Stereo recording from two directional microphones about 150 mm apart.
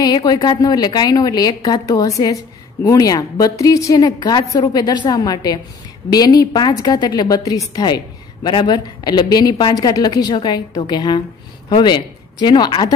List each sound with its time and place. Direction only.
0.0 s a woman's voice: 25° left (ahead or behind)